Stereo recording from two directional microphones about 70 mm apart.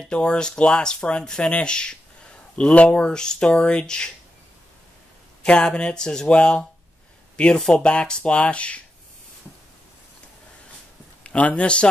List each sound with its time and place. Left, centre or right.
0.0 s speech: centre
5.4 s speech: centre
11.2 s speech: centre